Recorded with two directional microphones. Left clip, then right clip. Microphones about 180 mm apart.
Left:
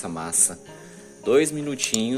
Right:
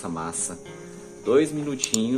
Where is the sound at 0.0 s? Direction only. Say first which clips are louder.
Left 3 dB; 40° left (ahead or behind).